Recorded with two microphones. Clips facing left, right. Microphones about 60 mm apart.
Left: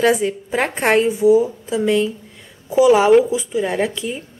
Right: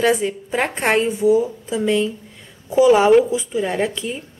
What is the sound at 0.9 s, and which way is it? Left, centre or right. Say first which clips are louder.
Speech: left 3 dB; centre.